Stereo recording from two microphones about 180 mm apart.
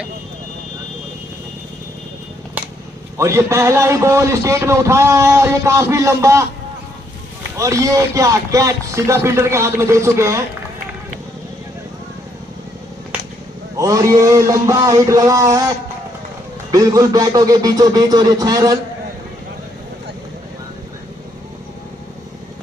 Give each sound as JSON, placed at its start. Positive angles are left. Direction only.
{"t": 3.2, "sound": "a man's voice", "side_deg": -15}
{"t": 7.5, "sound": "a man's voice", "side_deg": -15}
{"t": 13.7, "sound": "speech", "side_deg": -20}
{"t": 16.7, "sound": "speech", "side_deg": -20}